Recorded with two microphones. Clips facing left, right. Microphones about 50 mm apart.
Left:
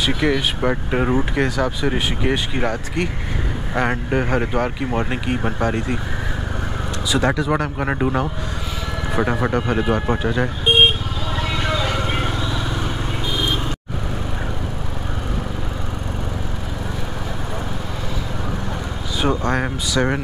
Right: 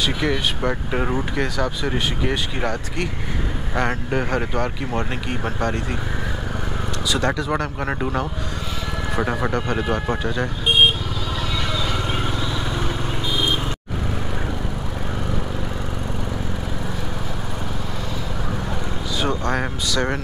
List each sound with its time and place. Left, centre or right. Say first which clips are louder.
0.0 s speech: left 2 dB; centre
7.1 s speech: left 3 dB; centre
11.5 s vehicle: left 4 dB; left
19.2 s speech: left 4 dB; centre